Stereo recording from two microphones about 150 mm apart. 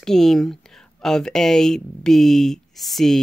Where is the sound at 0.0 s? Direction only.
5° left (ahead or behind).